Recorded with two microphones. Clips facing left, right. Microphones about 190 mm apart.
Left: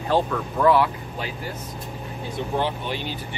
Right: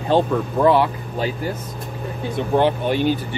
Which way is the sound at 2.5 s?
55° right (ahead or behind).